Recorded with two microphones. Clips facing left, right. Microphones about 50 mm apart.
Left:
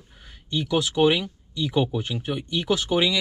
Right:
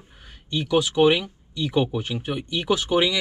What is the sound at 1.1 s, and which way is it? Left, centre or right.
Speech, centre.